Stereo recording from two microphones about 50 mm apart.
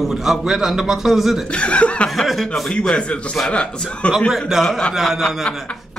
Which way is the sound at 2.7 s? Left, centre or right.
Centre.